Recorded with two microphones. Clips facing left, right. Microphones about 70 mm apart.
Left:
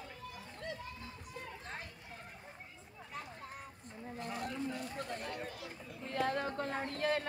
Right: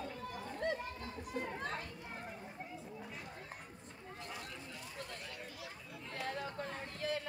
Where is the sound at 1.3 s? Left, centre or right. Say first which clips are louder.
Right 9 dB; right.